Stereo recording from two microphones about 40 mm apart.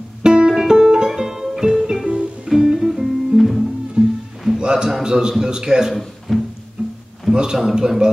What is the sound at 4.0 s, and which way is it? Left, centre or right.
Music, right.